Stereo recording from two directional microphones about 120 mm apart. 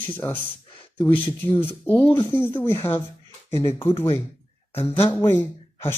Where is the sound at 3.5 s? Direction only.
55° left (ahead or behind).